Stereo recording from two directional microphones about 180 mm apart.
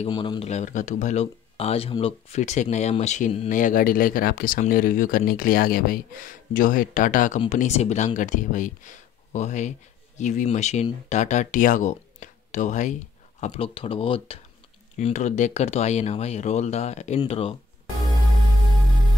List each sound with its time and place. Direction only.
0.0 s speech: 25° left (ahead or behind)